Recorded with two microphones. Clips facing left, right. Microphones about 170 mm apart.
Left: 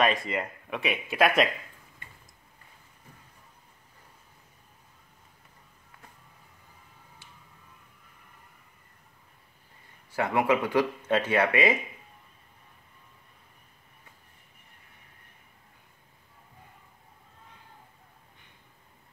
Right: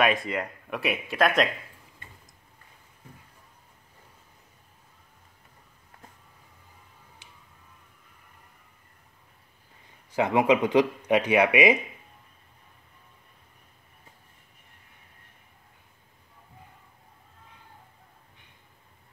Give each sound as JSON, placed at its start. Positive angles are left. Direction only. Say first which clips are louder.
{"t": 0.0, "sound": "speech", "louder": "right 1 dB", "side_deg": 0}
{"t": 7.2, "sound": "music", "louder": "even", "side_deg": -15}
{"t": 10.1, "sound": "speech", "louder": "right 3 dB", "side_deg": -20}